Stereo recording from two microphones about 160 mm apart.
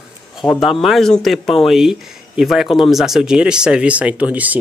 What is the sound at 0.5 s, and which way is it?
Speech, centre (ahead or behind).